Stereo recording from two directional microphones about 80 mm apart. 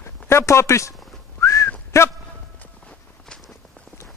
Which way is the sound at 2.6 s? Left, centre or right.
Centre.